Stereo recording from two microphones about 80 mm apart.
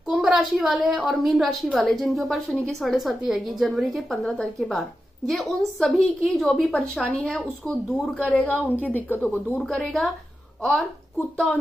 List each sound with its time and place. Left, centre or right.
0.0 s a woman's voice: centre
6.6 s speech: centre
8.5 s a woman's voice: left
9.6 s a woman's voice: centre